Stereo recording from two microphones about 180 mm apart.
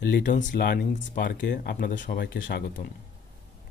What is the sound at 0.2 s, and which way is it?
Speech, 45° left (ahead or behind).